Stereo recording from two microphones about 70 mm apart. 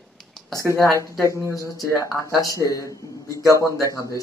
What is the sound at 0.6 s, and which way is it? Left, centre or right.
Speech, right.